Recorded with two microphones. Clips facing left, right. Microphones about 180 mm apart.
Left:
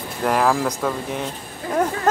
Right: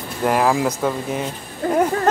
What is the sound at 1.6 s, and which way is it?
Speech, 50° right (ahead or behind).